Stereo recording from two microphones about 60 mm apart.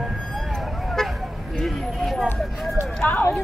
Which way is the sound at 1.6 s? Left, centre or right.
Centre.